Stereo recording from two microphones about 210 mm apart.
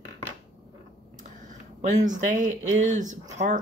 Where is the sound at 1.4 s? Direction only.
35° right (ahead or behind).